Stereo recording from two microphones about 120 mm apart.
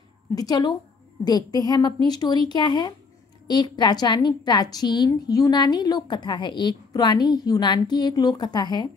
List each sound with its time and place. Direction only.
0.4 s a woman's voice: 35° left (ahead or behind)